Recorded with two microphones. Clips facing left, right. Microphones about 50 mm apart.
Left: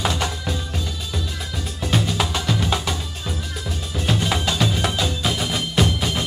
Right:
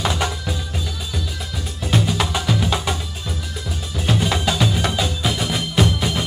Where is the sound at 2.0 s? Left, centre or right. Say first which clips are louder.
Right 2 dB; centre.